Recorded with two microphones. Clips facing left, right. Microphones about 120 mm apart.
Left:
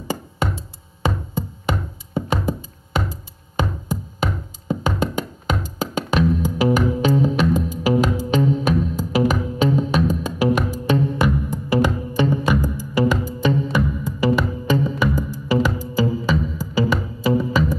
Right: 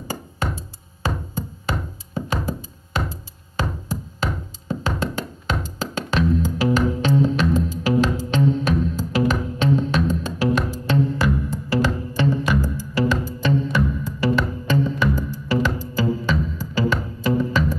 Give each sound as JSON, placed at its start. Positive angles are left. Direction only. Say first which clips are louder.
{"t": 1.7, "sound": "music", "louder": "left 3 dB", "side_deg": 20}